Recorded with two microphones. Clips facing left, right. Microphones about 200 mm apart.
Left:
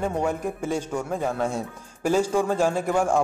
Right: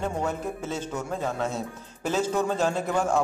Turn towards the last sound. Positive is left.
turn(degrees=10)  # may be behind; listen again after turning